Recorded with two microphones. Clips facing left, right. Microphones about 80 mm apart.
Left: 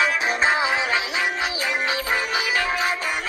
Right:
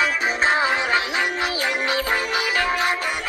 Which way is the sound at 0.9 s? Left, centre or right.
Centre.